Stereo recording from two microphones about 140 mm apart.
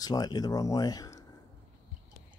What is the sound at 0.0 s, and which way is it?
Speech, 30° left (ahead or behind).